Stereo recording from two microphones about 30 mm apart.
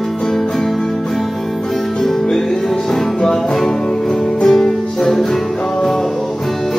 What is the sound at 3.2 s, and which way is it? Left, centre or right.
Music, centre.